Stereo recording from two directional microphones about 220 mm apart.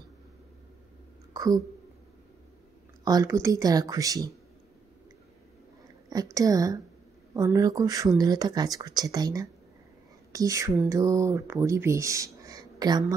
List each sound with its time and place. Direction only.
1.3 s a sound: 15° right (ahead or behind)
3.1 s speech: 15° right (ahead or behind)
6.0 s speech: 15° right (ahead or behind)